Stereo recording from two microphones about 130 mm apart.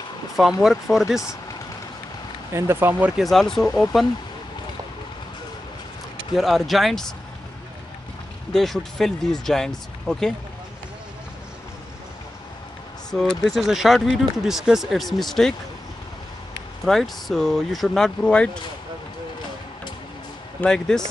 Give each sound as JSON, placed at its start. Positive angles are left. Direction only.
{"t": 0.4, "sound": "speech", "side_deg": -5}
{"t": 2.5, "sound": "speech", "side_deg": -20}
{"t": 3.2, "sound": "speech", "side_deg": 0}
{"t": 6.3, "sound": "speech", "side_deg": 0}
{"t": 8.5, "sound": "speech", "side_deg": 5}
{"t": 13.1, "sound": "speech", "side_deg": 5}
{"t": 16.8, "sound": "speech", "side_deg": 0}
{"t": 20.6, "sound": "speech", "side_deg": 5}